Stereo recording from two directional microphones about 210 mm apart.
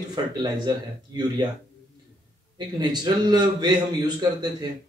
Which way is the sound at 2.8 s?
20° right (ahead or behind).